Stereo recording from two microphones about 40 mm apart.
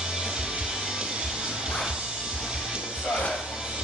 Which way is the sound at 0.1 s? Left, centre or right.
Centre.